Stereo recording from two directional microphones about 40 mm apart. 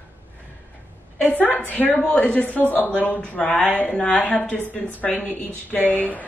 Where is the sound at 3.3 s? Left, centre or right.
Left.